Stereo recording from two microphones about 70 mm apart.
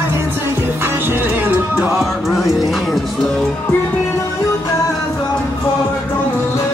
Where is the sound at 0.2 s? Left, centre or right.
Right.